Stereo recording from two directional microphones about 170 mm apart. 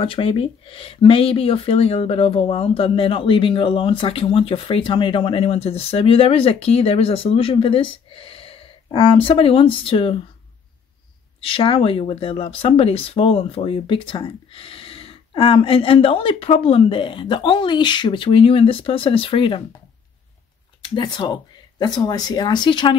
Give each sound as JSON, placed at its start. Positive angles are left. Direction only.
{"t": 0.0, "sound": "speech", "side_deg": 30}
{"t": 11.4, "sound": "speech", "side_deg": 35}
{"t": 20.8, "sound": "speech", "side_deg": 25}